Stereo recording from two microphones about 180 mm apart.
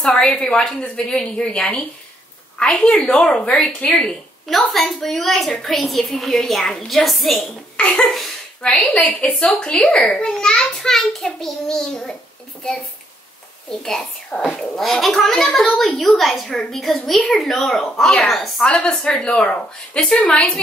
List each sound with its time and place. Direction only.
0.0 s a woman's voice: 5° left (ahead or behind)
13.7 s a woman's voice: 5° left (ahead or behind)